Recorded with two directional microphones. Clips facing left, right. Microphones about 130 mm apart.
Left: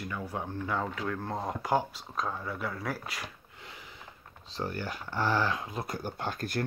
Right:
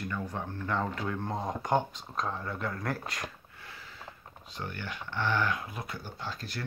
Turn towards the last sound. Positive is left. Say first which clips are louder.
# left 6 dB
turn(degrees=50)  # may be behind; listen again after turning